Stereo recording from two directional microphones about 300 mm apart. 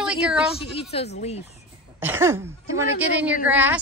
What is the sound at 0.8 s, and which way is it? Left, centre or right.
Speech, centre.